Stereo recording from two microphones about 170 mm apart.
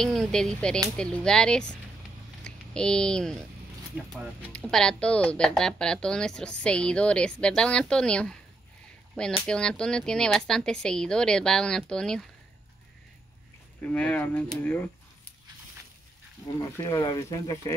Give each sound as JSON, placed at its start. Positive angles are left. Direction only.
{"t": 0.0, "sound": "speech", "side_deg": 0}
{"t": 3.9, "sound": "speech", "side_deg": -5}
{"t": 4.5, "sound": "speech", "side_deg": 5}
{"t": 13.9, "sound": "speech", "side_deg": 10}
{"t": 16.5, "sound": "speech", "side_deg": 20}